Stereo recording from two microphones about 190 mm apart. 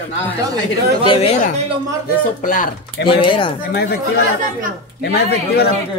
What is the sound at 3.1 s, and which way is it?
Speech, 25° left (ahead or behind).